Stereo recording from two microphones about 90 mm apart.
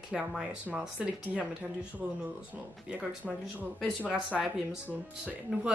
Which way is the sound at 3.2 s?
5° right (ahead or behind).